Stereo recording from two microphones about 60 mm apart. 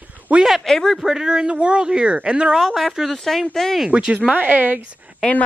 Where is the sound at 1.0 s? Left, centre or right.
Centre.